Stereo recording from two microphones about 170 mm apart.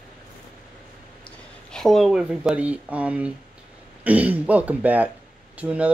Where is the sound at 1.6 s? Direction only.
Centre (ahead or behind).